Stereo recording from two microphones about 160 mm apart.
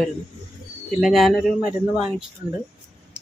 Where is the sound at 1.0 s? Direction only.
Centre (ahead or behind).